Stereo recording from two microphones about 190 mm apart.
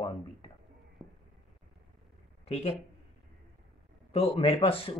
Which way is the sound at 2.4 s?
35° left (ahead or behind).